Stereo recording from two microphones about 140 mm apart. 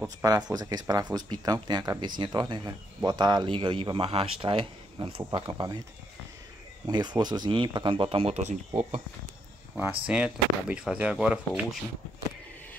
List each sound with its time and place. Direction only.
0.0 s speech: 25° right (ahead or behind)
6.9 s speech: 30° right (ahead or behind); by 9.0 s 55° right (ahead or behind)
9.8 s speech: 10° right (ahead or behind)